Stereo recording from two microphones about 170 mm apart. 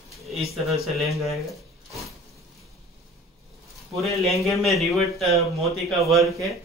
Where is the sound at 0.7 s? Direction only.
Centre (ahead or behind).